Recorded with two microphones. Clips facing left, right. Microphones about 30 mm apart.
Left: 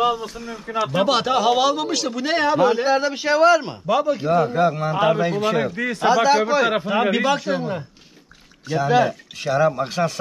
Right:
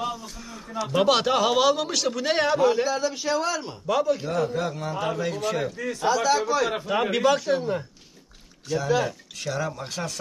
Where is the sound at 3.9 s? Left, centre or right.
Centre.